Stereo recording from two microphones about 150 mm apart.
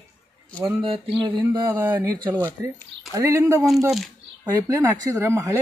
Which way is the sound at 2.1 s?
30° right (ahead or behind).